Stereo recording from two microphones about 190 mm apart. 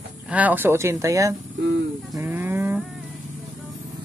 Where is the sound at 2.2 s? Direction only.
10° right (ahead or behind).